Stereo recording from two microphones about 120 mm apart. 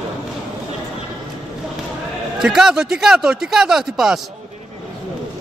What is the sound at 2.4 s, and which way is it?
Speech, 5° right (ahead or behind).